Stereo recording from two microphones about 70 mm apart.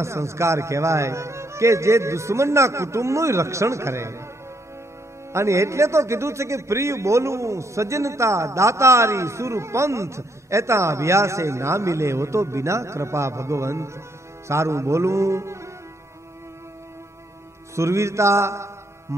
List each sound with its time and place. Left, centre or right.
0.0 s a man's voice: right
5.3 s a man's voice: right
17.7 s a man's voice: right